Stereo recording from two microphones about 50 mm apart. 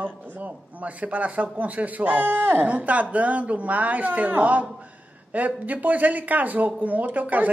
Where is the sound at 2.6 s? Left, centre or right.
Right.